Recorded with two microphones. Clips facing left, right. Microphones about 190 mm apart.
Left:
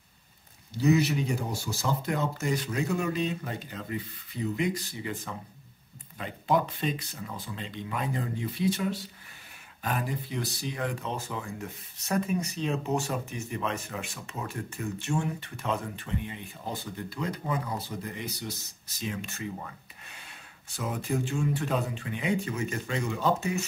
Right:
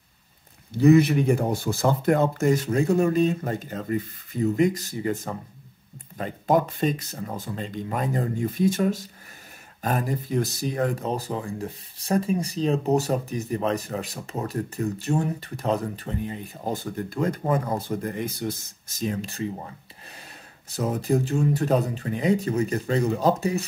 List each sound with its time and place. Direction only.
0.7 s speech: 55° right (ahead or behind); by 19.7 s 30° right (ahead or behind)
20.7 s speech: 40° right (ahead or behind)